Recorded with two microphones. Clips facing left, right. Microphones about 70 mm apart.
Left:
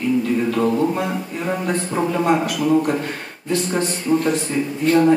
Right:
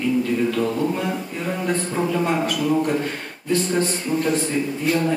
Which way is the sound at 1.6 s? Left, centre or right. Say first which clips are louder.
Right 1 dB; centre.